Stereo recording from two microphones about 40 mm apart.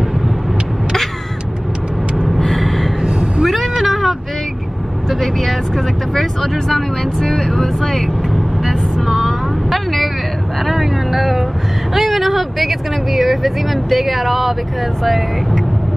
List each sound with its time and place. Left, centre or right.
2.2 s gasp: centre
3.0 s cat: right
3.8 s a sound: centre
5.2 s vehicle: centre